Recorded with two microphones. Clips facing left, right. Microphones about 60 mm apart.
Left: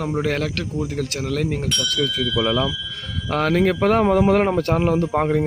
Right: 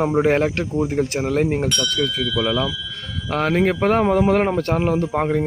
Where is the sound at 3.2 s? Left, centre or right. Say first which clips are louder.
Even; right.